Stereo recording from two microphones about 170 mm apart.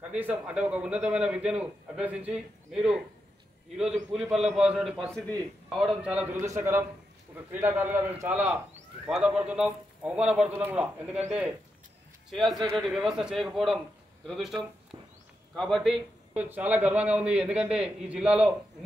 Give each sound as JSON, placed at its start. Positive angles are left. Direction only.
{"t": 0.1, "sound": "a man's voice", "side_deg": -10}
{"t": 4.1, "sound": "a man's voice", "side_deg": 0}
{"t": 6.4, "sound": "a man's voice", "side_deg": -15}
{"t": 12.3, "sound": "a man's voice", "side_deg": 0}
{"t": 15.5, "sound": "a man's voice", "side_deg": 0}